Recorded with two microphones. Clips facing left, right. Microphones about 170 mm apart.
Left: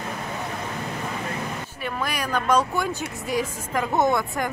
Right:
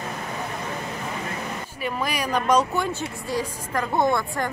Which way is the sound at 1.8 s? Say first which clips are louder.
Right 2 dB; 10° right (ahead or behind).